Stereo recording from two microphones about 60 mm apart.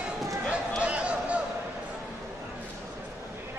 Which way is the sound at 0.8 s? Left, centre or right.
Right.